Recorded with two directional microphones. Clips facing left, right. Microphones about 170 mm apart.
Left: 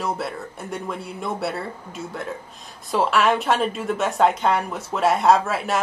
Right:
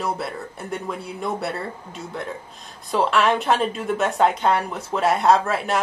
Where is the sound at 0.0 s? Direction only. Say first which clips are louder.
Even; centre (ahead or behind).